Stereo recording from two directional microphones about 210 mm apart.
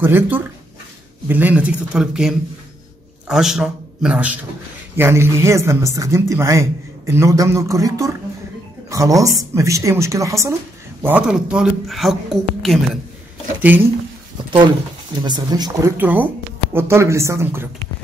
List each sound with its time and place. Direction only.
0.0 s a man's voice: 10° right (ahead or behind)
15.2 s speech: 20° right (ahead or behind)